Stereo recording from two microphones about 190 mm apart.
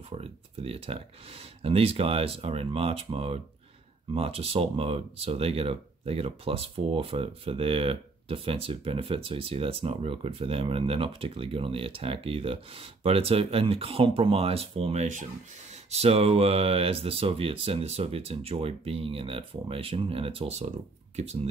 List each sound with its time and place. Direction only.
0.1 s speech: 30° right (ahead or behind)